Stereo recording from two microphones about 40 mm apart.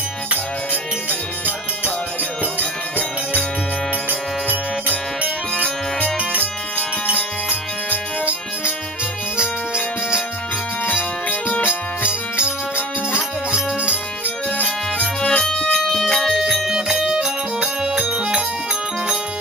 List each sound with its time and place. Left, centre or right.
2.6 s music: left
4.1 s music: right
5.6 s music: left
11.2 s music: left
15.2 s music: centre
15.8 s music: centre
16.6 s music: centre